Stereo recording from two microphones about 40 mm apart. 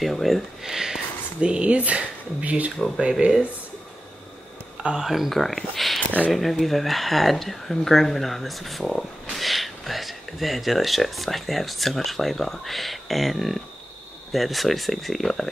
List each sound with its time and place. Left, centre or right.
0.0 s speech: centre
0.7 s speech: centre
1.4 s speech: right
5.0 s speech: centre